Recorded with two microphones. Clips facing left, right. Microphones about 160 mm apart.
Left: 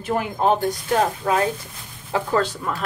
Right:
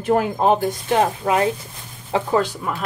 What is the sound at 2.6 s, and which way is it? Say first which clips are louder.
Speech: right 1 dB; 5° right (ahead or behind).